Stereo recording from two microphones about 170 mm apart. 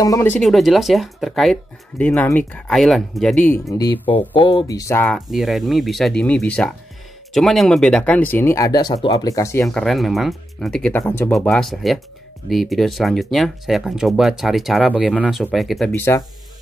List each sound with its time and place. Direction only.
0.0 s speech: 15° left (ahead or behind)
0.4 s speech: centre (ahead or behind)
3.7 s speech: 25° left (ahead or behind)
4.0 s speech: 10° left (ahead or behind)
4.4 s speech: 30° left (ahead or behind)
5.0 s speech: centre (ahead or behind); by 9.7 s 15° left (ahead or behind)
9.7 s speech: centre (ahead or behind)
11.3 s speech: centre (ahead or behind)
15.9 s speech: 15° left (ahead or behind)